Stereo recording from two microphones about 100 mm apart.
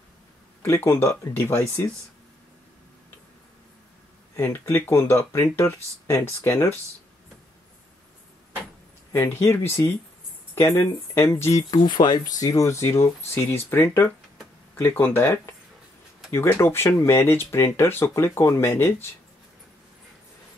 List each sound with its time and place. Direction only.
0.6 s speech: 25° left (ahead or behind)
4.4 s speech: 25° left (ahead or behind)
9.1 s speech: 20° left (ahead or behind)
11.7 s speech: 50° left (ahead or behind); by 19.0 s 25° left (ahead or behind)